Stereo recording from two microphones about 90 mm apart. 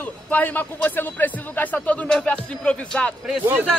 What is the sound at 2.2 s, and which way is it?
Music, 10° left (ahead or behind).